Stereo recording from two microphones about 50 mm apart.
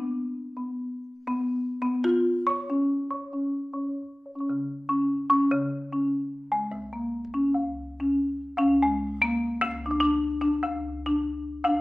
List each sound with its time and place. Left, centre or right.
0.0 s marimba: centre
7.6 s music: centre
9.7 s marimba: centre
11.6 s marimba: centre